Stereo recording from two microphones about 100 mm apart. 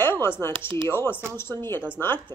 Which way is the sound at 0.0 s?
25° left (ahead or behind).